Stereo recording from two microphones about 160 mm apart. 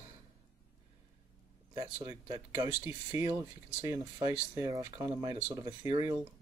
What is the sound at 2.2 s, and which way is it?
Speech, 25° right (ahead or behind).